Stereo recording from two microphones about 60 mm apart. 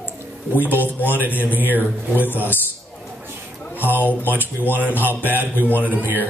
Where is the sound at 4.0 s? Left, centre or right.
Left.